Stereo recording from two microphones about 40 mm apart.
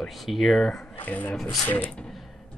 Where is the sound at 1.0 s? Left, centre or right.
Left.